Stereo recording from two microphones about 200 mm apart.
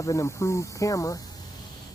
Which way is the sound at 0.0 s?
15° left (ahead or behind).